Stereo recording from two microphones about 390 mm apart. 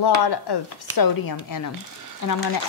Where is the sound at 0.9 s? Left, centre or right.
Left.